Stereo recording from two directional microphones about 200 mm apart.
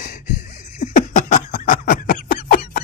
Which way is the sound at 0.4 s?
35° left (ahead or behind).